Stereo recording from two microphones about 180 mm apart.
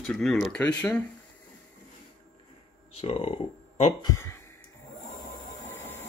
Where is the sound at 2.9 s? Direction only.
30° left (ahead or behind).